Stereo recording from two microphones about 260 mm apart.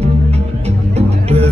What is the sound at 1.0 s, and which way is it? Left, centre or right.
Music, right.